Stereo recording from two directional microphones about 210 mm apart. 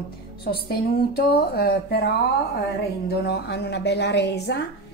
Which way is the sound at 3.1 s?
50° left (ahead or behind).